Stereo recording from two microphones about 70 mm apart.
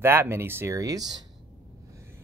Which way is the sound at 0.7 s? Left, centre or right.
Right.